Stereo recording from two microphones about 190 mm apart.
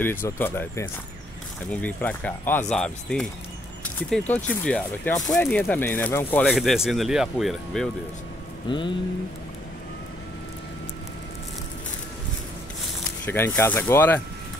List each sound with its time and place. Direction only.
0.0 s speech: 10° left (ahead or behind)
4.6 s speech: 5° left (ahead or behind)
8.6 s a sound: 25° left (ahead or behind)
13.2 s speech: 10° left (ahead or behind)